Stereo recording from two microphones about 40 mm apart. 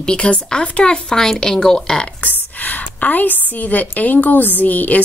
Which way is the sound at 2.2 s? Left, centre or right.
Left.